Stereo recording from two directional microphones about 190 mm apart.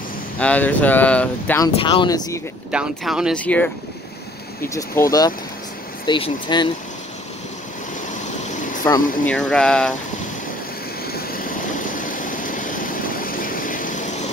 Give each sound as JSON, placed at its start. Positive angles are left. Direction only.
{"t": 0.4, "sound": "speech", "side_deg": 10}
{"t": 1.8, "sound": "speech", "side_deg": 25}
{"t": 2.7, "sound": "speech", "side_deg": -5}
{"t": 8.8, "sound": "speech", "side_deg": 15}
{"t": 11.1, "sound": "vehicle", "side_deg": 55}